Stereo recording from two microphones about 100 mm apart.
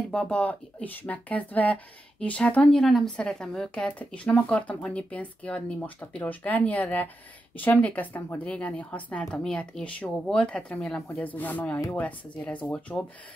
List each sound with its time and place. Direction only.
0.1 s speech: 10° left (ahead or behind)
2.8 s speech: 5° left (ahead or behind)
11.1 s speech: 15° left (ahead or behind)